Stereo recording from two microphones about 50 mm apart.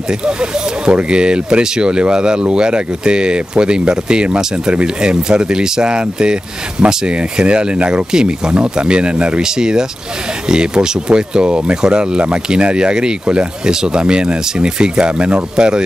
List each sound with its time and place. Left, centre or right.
0.2 s speech: centre